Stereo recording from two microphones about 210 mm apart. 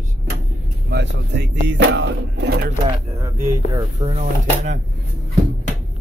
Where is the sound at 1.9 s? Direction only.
55° right (ahead or behind).